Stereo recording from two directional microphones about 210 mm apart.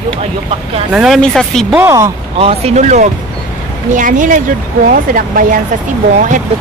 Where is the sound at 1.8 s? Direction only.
15° right (ahead or behind).